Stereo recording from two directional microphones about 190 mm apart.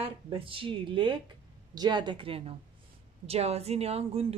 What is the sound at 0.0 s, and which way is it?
Speech, 30° right (ahead or behind).